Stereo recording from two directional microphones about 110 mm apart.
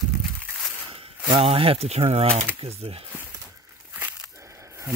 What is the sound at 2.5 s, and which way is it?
Speech, 60° right (ahead or behind).